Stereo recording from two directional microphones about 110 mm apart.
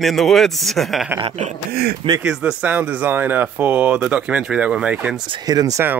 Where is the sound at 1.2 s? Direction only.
90° right.